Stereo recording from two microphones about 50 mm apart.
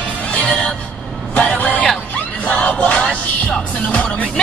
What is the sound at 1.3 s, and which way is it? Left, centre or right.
Vehicle, left.